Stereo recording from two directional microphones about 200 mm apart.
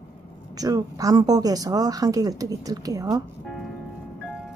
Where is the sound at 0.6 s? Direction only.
20° right (ahead or behind).